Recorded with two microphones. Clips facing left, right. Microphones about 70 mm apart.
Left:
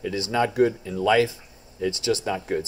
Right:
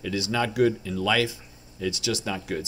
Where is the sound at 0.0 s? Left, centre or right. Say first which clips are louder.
Left 3 dB; left.